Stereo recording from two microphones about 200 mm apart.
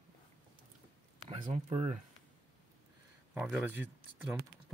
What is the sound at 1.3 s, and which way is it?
Speech, 30° right (ahead or behind).